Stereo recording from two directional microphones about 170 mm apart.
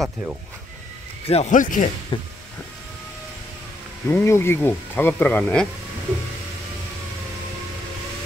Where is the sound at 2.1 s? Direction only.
30° left (ahead or behind).